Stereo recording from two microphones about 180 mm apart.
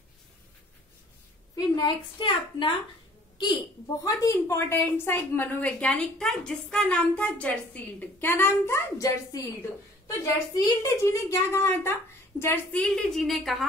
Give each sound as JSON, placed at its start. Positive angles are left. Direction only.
{"t": 1.5, "sound": "a woman's voice", "side_deg": 25}
{"t": 4.0, "sound": "a woman's voice", "side_deg": 20}